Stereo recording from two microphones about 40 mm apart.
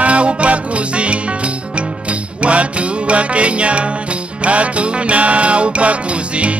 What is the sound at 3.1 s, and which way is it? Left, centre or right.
Music, right.